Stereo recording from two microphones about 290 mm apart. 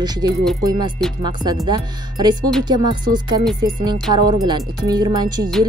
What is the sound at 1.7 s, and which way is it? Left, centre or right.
Speech, centre.